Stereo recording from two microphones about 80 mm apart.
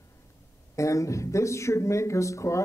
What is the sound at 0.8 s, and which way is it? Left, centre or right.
A man's voice, left.